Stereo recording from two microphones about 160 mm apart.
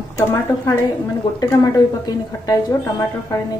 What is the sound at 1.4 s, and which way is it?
Speech, 20° left (ahead or behind).